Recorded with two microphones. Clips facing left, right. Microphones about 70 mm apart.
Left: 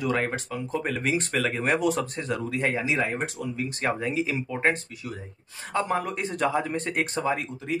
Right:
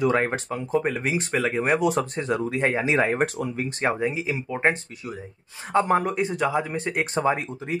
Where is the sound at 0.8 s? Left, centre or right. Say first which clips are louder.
Right 1 dB; centre.